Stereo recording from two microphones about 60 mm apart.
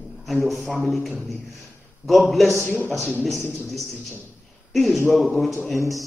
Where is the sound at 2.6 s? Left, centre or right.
Right.